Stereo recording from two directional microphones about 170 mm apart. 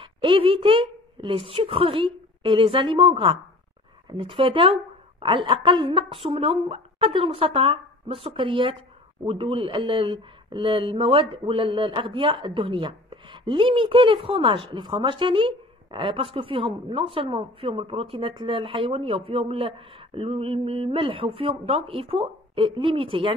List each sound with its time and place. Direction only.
0.0 s a woman's voice: 30° right (ahead or behind)